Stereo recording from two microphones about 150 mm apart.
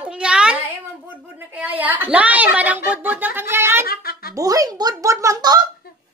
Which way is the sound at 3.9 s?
85° left.